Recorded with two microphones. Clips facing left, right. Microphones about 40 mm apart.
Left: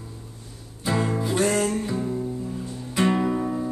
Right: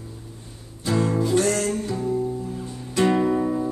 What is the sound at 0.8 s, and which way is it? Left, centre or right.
Music, left.